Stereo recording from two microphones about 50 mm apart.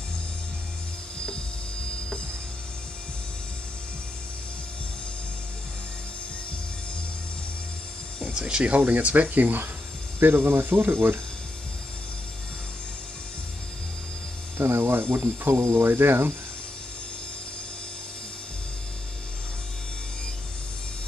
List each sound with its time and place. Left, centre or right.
8.3 s speech: centre
8.6 s speech: right
14.6 s speech: right
15.5 s speech: right
15.8 s speech: right